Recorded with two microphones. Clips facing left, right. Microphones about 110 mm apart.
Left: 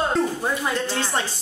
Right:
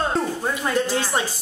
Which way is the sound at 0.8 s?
10° right (ahead or behind).